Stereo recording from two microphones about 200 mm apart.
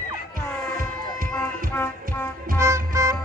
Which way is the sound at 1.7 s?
10° left (ahead or behind).